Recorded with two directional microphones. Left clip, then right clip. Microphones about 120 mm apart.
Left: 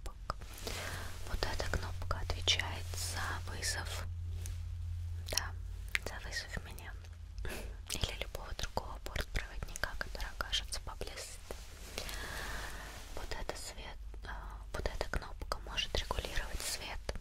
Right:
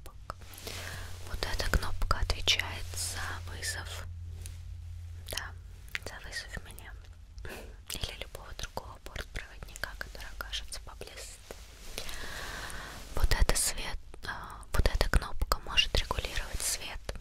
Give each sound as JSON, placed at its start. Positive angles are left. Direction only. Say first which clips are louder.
{"t": 0.0, "sound": "whispering", "louder": "left 1 dB", "side_deg": 20}
{"t": 1.7, "sound": "whispering", "louder": "right 7 dB", "side_deg": -35}
{"t": 3.1, "sound": "whispering", "louder": "left 2 dB", "side_deg": 0}
{"t": 5.2, "sound": "whispering", "louder": "left 1 dB", "side_deg": 0}
{"t": 12.4, "sound": "a sound", "louder": "right 3 dB", "side_deg": -20}
{"t": 13.1, "sound": "whispering", "louder": "right 11 dB", "side_deg": -65}